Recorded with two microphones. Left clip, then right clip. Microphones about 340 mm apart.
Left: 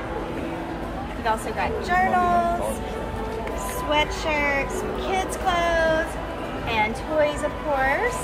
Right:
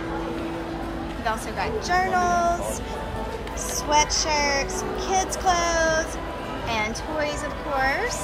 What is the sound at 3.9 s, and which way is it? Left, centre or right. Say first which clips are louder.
Speech: right 2 dB; centre.